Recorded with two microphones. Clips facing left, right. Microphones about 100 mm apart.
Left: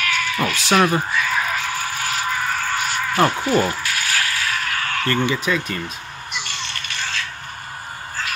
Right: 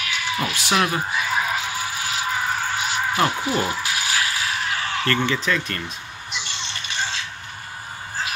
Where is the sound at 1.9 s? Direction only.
50° left (ahead or behind).